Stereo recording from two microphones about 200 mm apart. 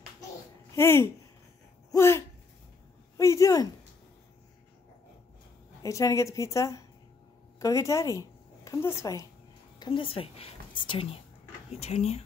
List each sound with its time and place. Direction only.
0.7 s a woman's voice: 10° left (ahead or behind)
1.9 s a sound: 15° left (ahead or behind)
3.2 s a woman's voice: 15° left (ahead or behind)
5.8 s a woman's voice: 15° left (ahead or behind); by 12.2 s 35° left (ahead or behind)